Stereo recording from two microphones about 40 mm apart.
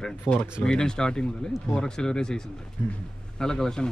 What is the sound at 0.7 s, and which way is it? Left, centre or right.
Speech, centre.